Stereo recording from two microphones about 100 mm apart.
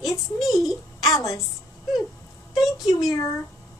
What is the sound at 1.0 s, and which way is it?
Speech, 35° left (ahead or behind).